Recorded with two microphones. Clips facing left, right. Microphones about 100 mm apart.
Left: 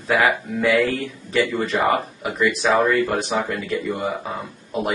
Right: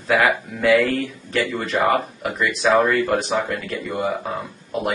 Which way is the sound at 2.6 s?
15° left (ahead or behind).